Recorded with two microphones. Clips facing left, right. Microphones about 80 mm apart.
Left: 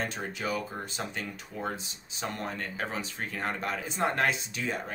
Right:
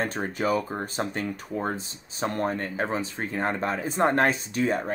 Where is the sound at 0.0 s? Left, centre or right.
Right.